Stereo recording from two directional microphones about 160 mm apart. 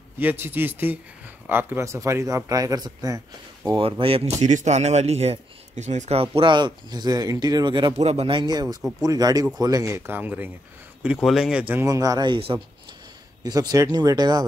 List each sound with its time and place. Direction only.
0.2 s speech: 10° right (ahead or behind); by 6.2 s 45° right (ahead or behind)
6.3 s speech: 30° right (ahead or behind)
7.9 s speech: 45° right (ahead or behind); by 14.4 s 25° right (ahead or behind)